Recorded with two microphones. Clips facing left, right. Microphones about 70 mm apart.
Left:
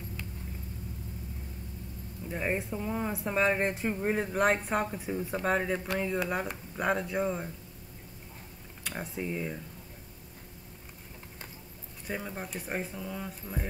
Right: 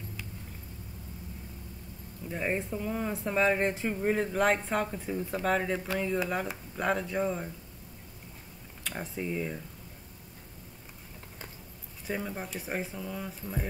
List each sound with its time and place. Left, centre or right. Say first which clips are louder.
2.2 s speech: even; centre
8.8 s speech: even; centre
12.1 s speech: right 2 dB; centre